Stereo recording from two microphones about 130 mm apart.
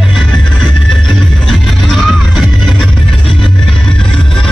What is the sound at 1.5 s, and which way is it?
Music, centre (ahead or behind).